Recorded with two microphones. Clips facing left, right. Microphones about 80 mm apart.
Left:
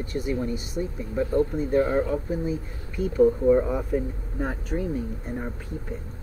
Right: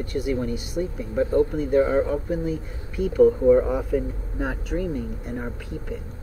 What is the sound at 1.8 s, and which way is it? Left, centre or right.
Speech, centre.